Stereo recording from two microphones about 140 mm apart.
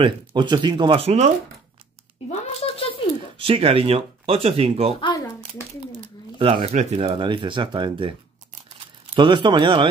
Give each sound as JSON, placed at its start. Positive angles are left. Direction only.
{"t": 0.0, "sound": "speech", "side_deg": -35}
{"t": 2.6, "sound": "a sound", "side_deg": 40}
{"t": 3.3, "sound": "speech", "side_deg": -40}
{"t": 5.0, "sound": "a sound", "side_deg": 30}
{"t": 6.3, "sound": "speech", "side_deg": -40}
{"t": 7.0, "sound": "speech", "side_deg": -35}